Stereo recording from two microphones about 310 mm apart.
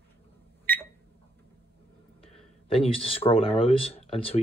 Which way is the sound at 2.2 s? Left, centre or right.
Centre.